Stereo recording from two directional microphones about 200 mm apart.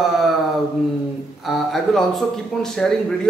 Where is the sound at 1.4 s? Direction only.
Centre (ahead or behind).